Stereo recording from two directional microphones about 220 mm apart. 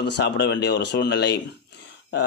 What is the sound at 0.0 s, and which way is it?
Speech, 50° left (ahead or behind).